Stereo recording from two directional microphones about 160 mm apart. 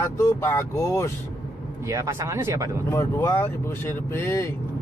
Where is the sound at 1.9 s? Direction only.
15° right (ahead or behind).